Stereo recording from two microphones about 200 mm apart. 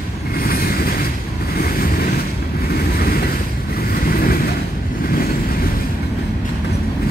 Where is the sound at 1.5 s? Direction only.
50° left (ahead or behind).